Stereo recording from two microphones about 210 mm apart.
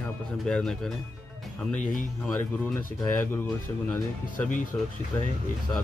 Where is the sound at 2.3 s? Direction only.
10° left (ahead or behind).